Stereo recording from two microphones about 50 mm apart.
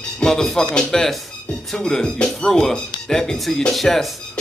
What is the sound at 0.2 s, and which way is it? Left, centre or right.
Speech, centre.